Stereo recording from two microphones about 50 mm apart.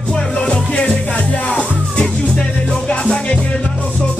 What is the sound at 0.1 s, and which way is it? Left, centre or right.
Music, centre.